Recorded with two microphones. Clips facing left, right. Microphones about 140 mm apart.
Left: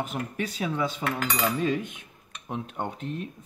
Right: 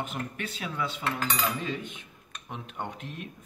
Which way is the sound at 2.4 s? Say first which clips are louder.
Left 5 dB; 35° left (ahead or behind).